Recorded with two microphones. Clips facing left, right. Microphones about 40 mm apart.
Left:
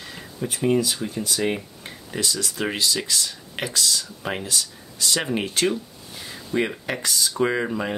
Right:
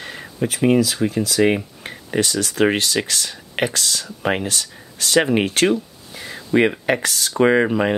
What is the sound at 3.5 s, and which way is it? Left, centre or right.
Speech, right.